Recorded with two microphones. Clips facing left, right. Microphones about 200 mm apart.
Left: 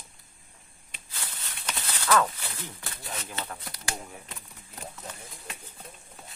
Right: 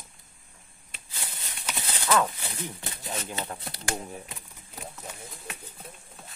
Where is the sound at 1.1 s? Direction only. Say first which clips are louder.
Right 1 dB; 15° right (ahead or behind).